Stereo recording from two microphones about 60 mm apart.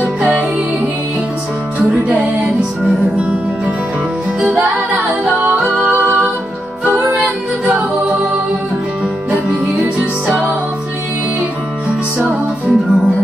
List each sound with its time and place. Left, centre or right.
0.0 s music: centre
2.1 s music: centre
5.0 s a capella: centre
12.3 s music: centre